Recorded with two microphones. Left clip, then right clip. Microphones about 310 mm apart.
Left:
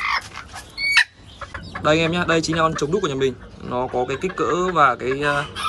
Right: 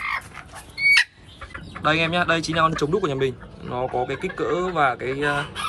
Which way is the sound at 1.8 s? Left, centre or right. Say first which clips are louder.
Left 2 dB; centre.